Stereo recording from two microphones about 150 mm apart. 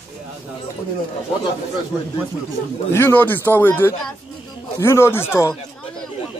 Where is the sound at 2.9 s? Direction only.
15° left (ahead or behind).